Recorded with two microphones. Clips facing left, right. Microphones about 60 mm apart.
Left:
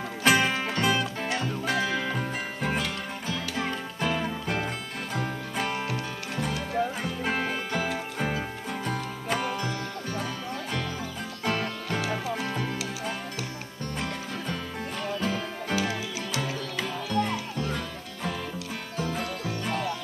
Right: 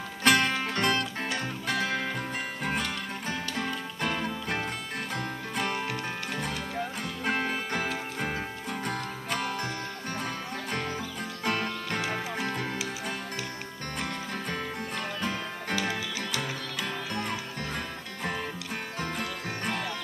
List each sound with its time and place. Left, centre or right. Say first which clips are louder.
0.2 s music: left 1 dB; centre
4.0 s music: left 3 dB; centre
11.9 s music: left 4 dB; right
15.2 s music: left 2 dB; centre
16.8 s music: left 6 dB; right